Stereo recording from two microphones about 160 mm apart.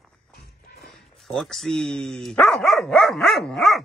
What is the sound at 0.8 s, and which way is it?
Speech, centre (ahead or behind).